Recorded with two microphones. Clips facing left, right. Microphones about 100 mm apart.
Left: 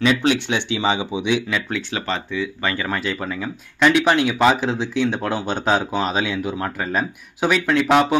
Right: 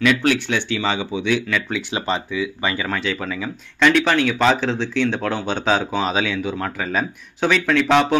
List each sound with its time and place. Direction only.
0.0 s speech: 25° left (ahead or behind)
1.8 s speech: 20° right (ahead or behind)
2.9 s speech: 5° left (ahead or behind)
3.8 s speech: 15° left (ahead or behind)